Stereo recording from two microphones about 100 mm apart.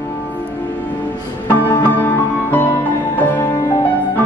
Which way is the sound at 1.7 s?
20° left (ahead or behind).